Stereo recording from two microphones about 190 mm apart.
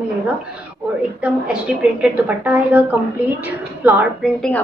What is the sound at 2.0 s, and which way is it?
A woman's voice, 5° right (ahead or behind).